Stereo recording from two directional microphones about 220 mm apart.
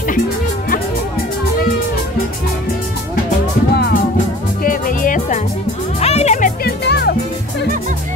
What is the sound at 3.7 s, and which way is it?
Music, 45° left (ahead or behind).